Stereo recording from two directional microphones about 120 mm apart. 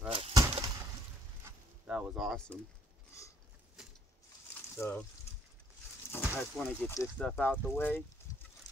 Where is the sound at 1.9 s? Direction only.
10° right (ahead or behind); by 2.6 s 5° left (ahead or behind).